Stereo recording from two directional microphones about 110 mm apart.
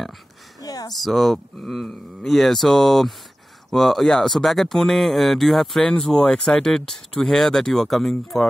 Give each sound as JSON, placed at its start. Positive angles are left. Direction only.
{"t": 0.6, "sound": "speech", "side_deg": 35}
{"t": 0.9, "sound": "speech", "side_deg": 0}